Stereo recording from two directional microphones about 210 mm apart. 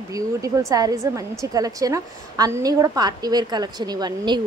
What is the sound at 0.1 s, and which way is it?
A woman's voice, 15° right (ahead or behind).